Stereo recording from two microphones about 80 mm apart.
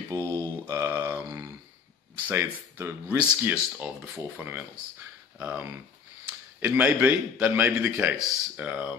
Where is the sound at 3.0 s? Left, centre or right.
Right.